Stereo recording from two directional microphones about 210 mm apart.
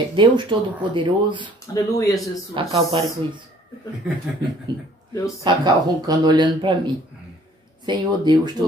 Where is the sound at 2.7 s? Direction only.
20° right (ahead or behind).